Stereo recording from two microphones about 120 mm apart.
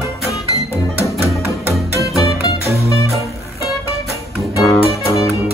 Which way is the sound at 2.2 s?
25° left (ahead or behind).